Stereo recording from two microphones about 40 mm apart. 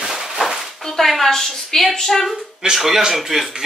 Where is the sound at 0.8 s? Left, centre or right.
Centre.